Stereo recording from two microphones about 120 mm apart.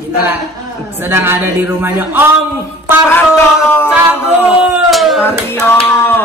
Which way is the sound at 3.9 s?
15° right (ahead or behind).